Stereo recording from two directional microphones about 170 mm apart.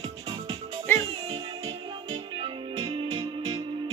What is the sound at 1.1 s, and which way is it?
Music, 35° right (ahead or behind).